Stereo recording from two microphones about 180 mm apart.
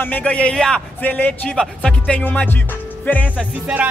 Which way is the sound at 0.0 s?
10° left (ahead or behind).